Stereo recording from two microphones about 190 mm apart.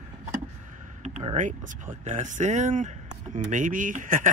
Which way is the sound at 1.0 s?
35° right (ahead or behind).